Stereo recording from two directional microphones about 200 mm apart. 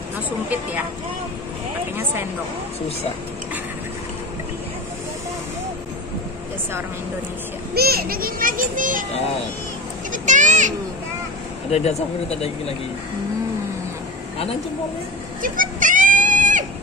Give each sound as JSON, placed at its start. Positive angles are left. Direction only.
{"t": 7.7, "sound": "a child's voice", "side_deg": -50}
{"t": 10.1, "sound": "a child's voice", "side_deg": -40}
{"t": 11.7, "sound": "speech", "side_deg": 30}
{"t": 15.4, "sound": "goat", "side_deg": -40}